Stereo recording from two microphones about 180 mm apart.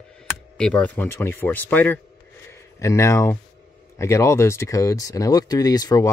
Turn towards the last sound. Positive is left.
turn(degrees=20)  # may be behind; listen again after turning